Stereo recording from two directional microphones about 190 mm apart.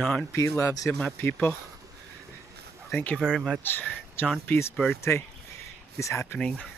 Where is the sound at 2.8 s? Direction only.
5° left (ahead or behind).